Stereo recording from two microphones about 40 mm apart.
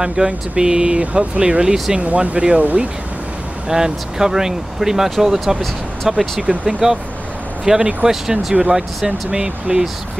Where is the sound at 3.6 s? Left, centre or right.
Centre.